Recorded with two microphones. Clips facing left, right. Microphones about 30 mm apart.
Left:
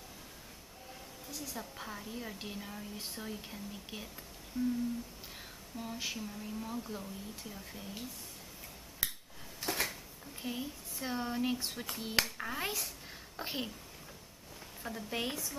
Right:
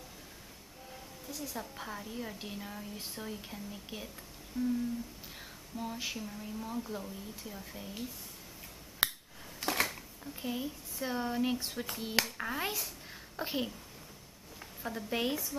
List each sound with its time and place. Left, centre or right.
1.3 s speech: centre
5.8 s speech: centre
9.0 s finger snapping: right
9.6 s a sound: right
9.8 s speech: centre
14.8 s speech: centre